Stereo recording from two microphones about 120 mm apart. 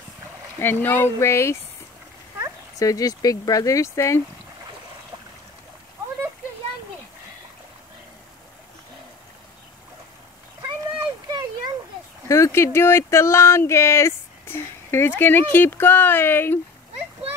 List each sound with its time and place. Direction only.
0.6 s speech: 15° left (ahead or behind)
2.8 s speech: 30° left (ahead or behind)
11.0 s a sound: 35° right (ahead or behind)
12.3 s speech: 25° left (ahead or behind)